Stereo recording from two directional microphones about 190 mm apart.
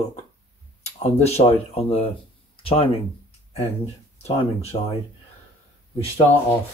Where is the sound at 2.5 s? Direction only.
30° left (ahead or behind).